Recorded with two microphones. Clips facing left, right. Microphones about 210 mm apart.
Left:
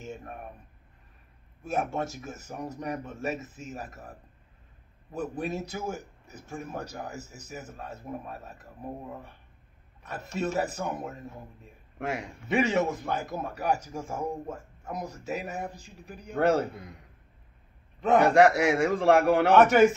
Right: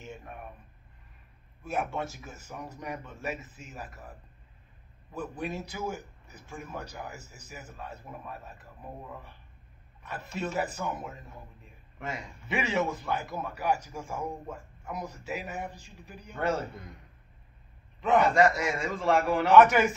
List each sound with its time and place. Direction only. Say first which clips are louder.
0.0 s a sound: left 4 dB; 45° left (ahead or behind)
1.6 s speech: left 3 dB; 45° left (ahead or behind)
5.4 s speech: right 1 dB; 45° left (ahead or behind)
10.0 s speech: left 4 dB; 45° left (ahead or behind)
12.0 s a man's voice: left 5 dB; 70° left (ahead or behind)
12.4 s speech: left 4 dB; 45° left (ahead or behind)
16.3 s a man's voice: left 6 dB; 70° left (ahead or behind)
18.2 s a man's voice: left 8 dB; 70° left (ahead or behind)
19.5 s speech: left 1 dB; 45° left (ahead or behind)